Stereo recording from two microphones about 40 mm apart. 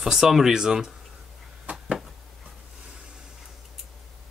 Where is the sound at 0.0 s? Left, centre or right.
Centre.